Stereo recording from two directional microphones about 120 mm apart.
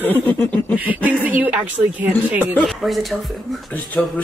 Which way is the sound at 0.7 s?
15° right (ahead or behind).